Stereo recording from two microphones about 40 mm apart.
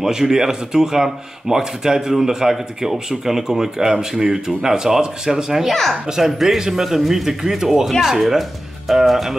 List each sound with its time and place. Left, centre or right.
0.0 s speech: centre
5.7 s speech: centre
6.0 s speech: centre